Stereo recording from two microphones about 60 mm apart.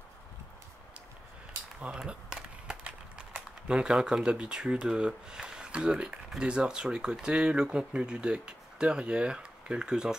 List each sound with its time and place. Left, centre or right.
1.9 s speech: centre